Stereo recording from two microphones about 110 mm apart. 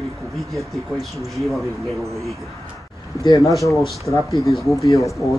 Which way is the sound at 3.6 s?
Centre (ahead or behind).